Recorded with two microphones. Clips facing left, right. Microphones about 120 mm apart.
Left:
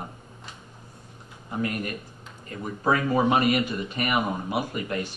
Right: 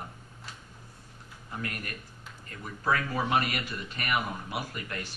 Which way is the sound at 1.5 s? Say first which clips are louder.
Left 9 dB; 20° left (ahead or behind).